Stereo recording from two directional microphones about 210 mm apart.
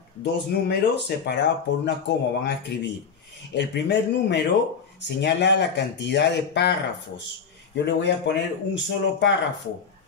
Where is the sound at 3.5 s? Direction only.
55° left (ahead or behind).